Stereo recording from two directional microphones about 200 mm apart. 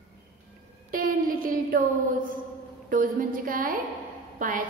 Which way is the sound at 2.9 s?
45° right (ahead or behind).